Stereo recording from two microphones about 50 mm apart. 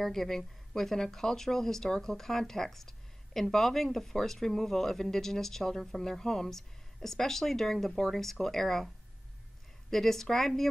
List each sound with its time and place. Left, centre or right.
0.0 s speech: centre